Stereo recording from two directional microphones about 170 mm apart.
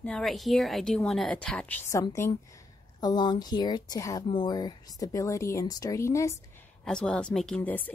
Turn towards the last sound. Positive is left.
turn(degrees=5)  # may be behind; listen again after turning